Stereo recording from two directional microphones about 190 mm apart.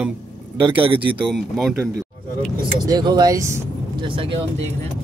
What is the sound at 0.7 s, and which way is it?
Speech, 25° right (ahead or behind).